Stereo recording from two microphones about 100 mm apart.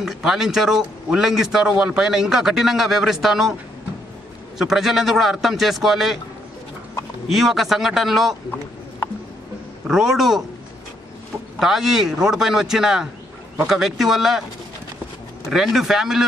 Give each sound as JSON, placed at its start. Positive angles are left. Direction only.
{"t": 0.0, "sound": "a man's voice", "side_deg": -5}
{"t": 4.6, "sound": "a man's voice", "side_deg": -5}
{"t": 7.2, "sound": "a man's voice", "side_deg": 0}
{"t": 9.8, "sound": "a man's voice", "side_deg": -5}
{"t": 11.6, "sound": "a man's voice", "side_deg": -5}
{"t": 15.5, "sound": "a man's voice", "side_deg": -5}